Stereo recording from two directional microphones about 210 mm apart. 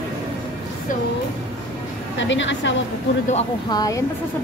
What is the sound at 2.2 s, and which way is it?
Speech, 60° left (ahead or behind).